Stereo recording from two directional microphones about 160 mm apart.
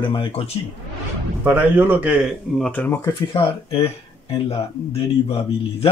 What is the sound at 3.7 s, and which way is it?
Speech, 35° left (ahead or behind).